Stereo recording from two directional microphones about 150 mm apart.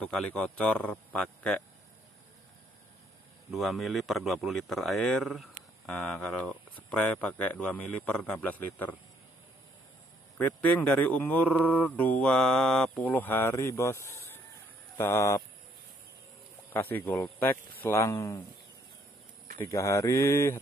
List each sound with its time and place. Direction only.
0.0 s speech: 10° left (ahead or behind)
3.5 s speech: centre (ahead or behind)
10.3 s speech: 10° left (ahead or behind)
16.7 s speech: 10° left (ahead or behind)
19.6 s speech: 20° left (ahead or behind)